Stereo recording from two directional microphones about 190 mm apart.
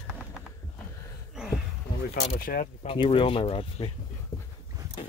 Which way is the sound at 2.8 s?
30° left (ahead or behind).